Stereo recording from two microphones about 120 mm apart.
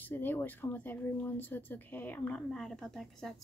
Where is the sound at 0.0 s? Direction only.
15° left (ahead or behind).